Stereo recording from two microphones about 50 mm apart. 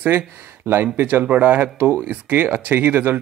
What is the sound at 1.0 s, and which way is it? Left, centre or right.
Speech, right.